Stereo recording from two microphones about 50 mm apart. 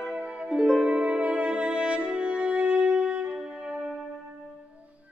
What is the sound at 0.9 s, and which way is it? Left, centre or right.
Music, right.